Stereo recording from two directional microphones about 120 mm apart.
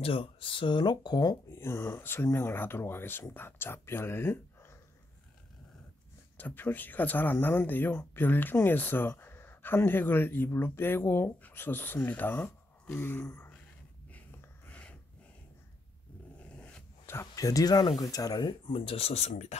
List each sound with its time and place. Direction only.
0.0 s speech: 50° left (ahead or behind)
1.5 s speech: 20° left (ahead or behind)
6.3 s speech: 15° left (ahead or behind)
14.7 s snort: 10° left (ahead or behind)
16.5 s dog: 10° left (ahead or behind)
17.0 s speech: 20° left (ahead or behind); by 19.5 s 65° left (ahead or behind)